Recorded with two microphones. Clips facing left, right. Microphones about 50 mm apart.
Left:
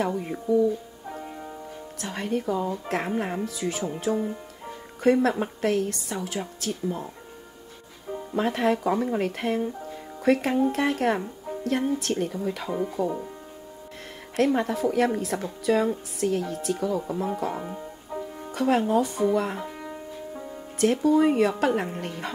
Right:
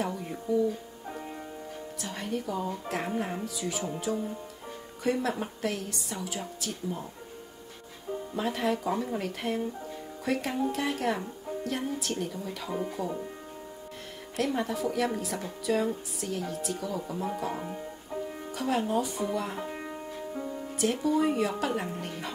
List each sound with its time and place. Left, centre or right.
0.0 s speech: left
2.0 s speech: left
8.4 s speech: left
14.3 s speech: left
17.6 s music: centre
18.5 s speech: left
20.8 s speech: left